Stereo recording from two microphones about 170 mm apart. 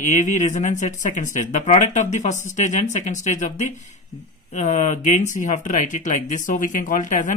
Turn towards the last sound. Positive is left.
turn(degrees=45)  # may be behind; listen again after turning